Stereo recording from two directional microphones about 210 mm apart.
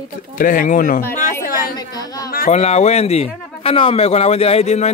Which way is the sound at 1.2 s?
40° left (ahead or behind).